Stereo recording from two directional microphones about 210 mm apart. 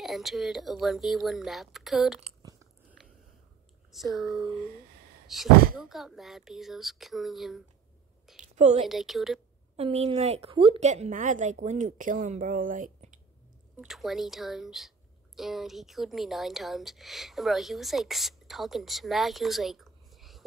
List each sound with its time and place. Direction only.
0.0 s speech: centre (ahead or behind)
3.9 s speech: centre (ahead or behind)
8.4 s a sound: 35° right (ahead or behind)
8.8 s speech: centre (ahead or behind)
9.8 s a woman's voice: 25° right (ahead or behind)
13.7 s speech: centre (ahead or behind)